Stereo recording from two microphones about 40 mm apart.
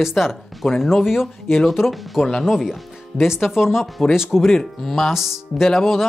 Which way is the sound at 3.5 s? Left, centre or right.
Centre.